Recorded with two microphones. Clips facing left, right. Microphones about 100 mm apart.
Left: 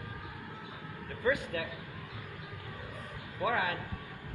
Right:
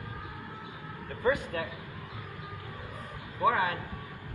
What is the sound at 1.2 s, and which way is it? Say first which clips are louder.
Speech: right 3 dB; 45° right (ahead or behind).